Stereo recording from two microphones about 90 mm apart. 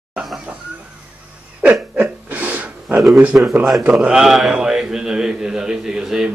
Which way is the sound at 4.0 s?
5° right (ahead or behind).